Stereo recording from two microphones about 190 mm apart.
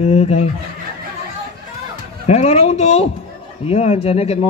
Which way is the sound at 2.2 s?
35° left (ahead or behind).